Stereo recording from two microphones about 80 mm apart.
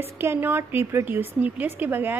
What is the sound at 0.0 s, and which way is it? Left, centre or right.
A woman's voice, right.